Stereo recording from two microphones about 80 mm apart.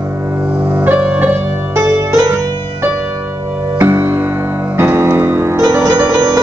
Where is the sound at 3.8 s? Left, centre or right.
Right.